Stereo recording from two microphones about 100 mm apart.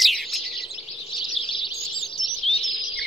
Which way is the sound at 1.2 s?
55° left (ahead or behind).